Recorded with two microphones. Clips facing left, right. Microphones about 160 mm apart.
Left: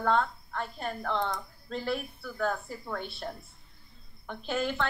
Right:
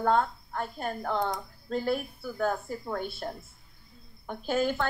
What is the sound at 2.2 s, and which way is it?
Speech, 10° right (ahead or behind).